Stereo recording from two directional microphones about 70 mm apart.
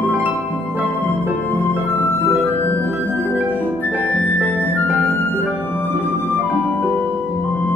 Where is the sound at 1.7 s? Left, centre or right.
Right.